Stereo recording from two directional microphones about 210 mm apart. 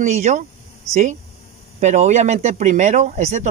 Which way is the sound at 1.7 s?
35° right (ahead or behind).